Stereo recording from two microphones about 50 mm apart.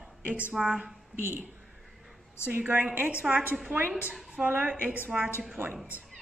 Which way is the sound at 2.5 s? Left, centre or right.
Right.